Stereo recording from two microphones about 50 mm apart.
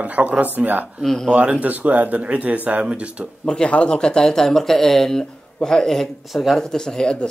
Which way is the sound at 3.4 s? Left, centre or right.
Centre.